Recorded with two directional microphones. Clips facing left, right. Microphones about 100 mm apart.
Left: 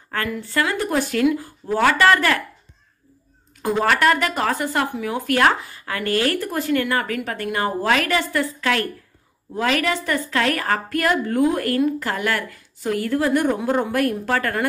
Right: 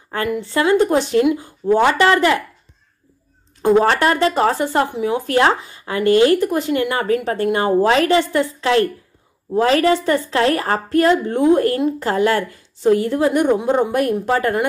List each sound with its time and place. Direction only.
0.1 s a woman's voice: 20° right (ahead or behind)
3.6 s a woman's voice: 30° right (ahead or behind)